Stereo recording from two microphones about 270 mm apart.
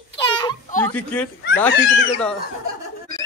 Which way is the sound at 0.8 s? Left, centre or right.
Centre.